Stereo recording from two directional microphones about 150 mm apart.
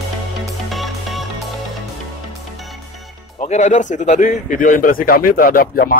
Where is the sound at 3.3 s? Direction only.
50° left (ahead or behind).